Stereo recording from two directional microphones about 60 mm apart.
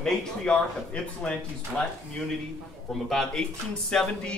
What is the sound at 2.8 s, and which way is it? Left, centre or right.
Speech, centre.